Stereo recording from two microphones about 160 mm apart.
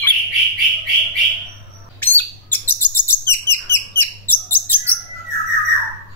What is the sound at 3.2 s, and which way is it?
Bird, 15° left (ahead or behind).